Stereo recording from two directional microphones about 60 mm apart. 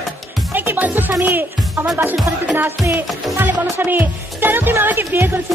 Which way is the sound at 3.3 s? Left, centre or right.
Right.